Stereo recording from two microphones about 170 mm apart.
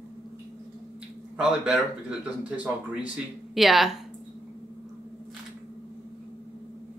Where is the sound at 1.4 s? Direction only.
5° right (ahead or behind).